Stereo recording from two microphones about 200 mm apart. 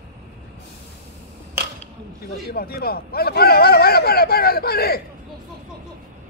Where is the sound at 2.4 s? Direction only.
50° left (ahead or behind).